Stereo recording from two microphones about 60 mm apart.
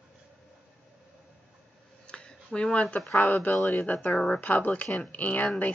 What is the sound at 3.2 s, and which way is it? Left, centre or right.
Speech, left.